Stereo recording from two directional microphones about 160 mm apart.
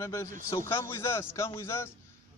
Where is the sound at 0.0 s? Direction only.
15° left (ahead or behind).